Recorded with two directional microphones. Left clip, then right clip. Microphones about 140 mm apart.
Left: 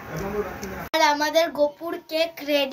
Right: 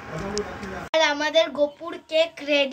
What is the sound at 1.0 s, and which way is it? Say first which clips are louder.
Speech: left 1 dB; 70° right (ahead or behind).